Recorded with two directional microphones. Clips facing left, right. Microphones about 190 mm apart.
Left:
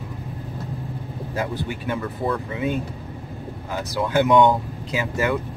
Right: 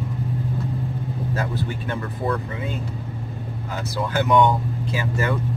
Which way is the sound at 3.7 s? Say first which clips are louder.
Left 3 dB; 20° left (ahead or behind).